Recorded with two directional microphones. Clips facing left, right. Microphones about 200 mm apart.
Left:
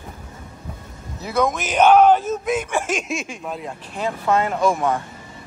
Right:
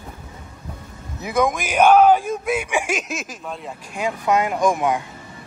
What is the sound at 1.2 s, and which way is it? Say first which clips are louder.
Speech: right 1 dB; 15° right (ahead or behind).